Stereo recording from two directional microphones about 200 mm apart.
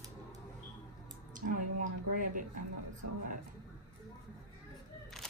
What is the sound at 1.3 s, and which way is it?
A woman's voice, 40° right (ahead or behind).